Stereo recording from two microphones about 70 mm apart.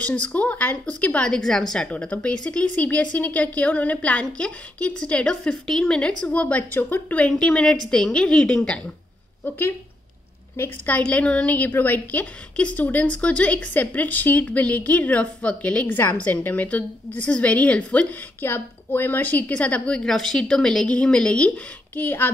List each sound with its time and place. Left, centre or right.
0.0 s a woman's voice: centre
1.9 s a woman's voice: centre
9.4 s a woman's voice: left
10.9 s a woman's voice: centre
18.4 s a woman's voice: left